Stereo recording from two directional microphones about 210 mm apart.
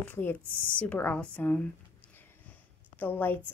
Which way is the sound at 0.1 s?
10° left (ahead or behind).